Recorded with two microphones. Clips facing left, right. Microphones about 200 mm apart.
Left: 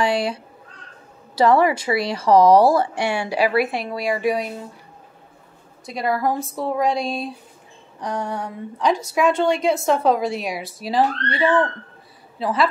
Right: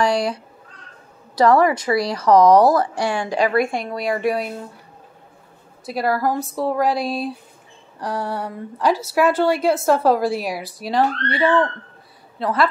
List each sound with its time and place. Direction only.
0.0 s a woman's voice: 25° left (ahead or behind)
1.3 s a woman's voice: 25° left (ahead or behind)
3.2 s a woman's voice: 10° left (ahead or behind)
5.9 s a woman's voice: 5° right (ahead or behind)